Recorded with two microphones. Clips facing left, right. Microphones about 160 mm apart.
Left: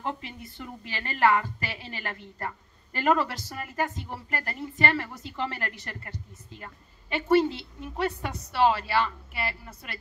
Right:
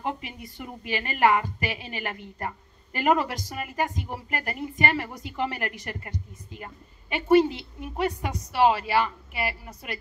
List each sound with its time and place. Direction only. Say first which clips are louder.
0.0 s a woman's voice: right 2 dB; 15° right (ahead or behind)